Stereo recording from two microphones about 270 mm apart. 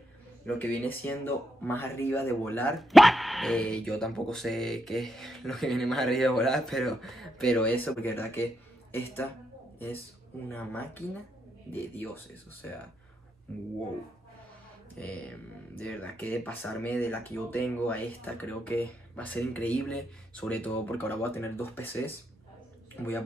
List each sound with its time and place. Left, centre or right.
0.5 s speech: centre
10.5 s speech: centre
15.0 s speech: centre